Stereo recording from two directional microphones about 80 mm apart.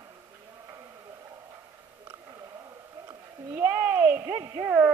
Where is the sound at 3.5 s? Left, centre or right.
Right.